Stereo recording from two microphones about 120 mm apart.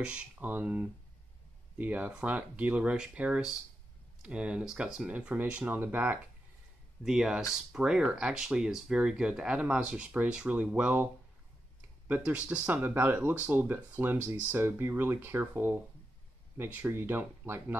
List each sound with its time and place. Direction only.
0.0 s speech: 10° right (ahead or behind)
7.1 s speech: 5° right (ahead or behind)
12.3 s speech: 15° right (ahead or behind)